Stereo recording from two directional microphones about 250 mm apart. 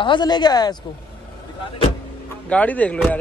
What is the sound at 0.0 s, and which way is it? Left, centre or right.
Speech, centre.